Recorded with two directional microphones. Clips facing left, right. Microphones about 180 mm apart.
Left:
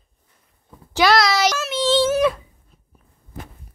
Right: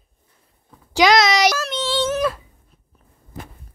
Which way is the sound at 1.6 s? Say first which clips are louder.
Left 2 dB; 5° left (ahead or behind).